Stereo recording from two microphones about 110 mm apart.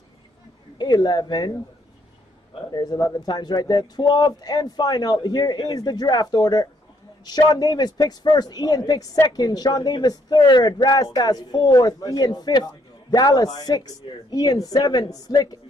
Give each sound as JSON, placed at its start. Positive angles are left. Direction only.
{"t": 0.7, "sound": "a man's voice", "side_deg": 40}
{"t": 2.7, "sound": "a man's voice", "side_deg": 35}